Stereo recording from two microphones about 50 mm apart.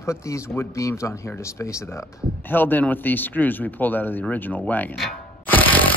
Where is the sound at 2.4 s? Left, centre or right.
Left.